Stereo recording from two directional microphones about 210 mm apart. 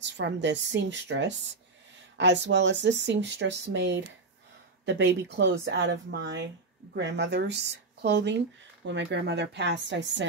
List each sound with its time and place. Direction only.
0.0 s speech: 60° right (ahead or behind)